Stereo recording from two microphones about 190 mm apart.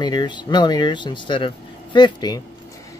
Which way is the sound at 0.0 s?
25° left (ahead or behind).